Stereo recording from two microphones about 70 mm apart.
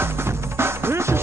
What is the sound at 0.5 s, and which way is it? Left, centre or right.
Music, right.